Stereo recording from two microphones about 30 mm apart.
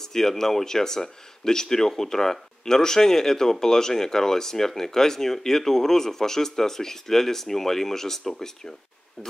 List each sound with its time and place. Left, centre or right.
0.0 s speech: centre